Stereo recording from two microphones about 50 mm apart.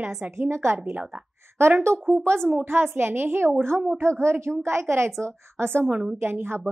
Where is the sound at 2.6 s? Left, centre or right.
Right.